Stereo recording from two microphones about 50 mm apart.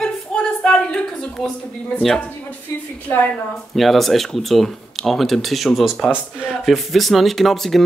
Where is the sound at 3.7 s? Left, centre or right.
Centre.